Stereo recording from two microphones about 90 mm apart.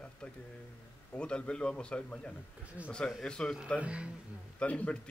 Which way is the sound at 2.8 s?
15° right (ahead or behind).